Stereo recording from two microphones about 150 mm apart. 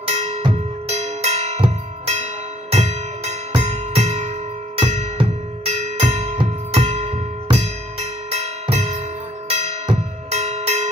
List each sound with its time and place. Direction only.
0.0 s music: 40° right (ahead or behind)
10.3 s bell: 50° right (ahead or behind)